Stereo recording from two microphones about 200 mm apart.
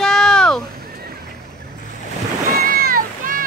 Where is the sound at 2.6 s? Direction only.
45° right (ahead or behind).